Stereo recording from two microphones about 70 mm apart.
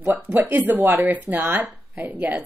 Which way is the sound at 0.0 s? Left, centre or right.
Right.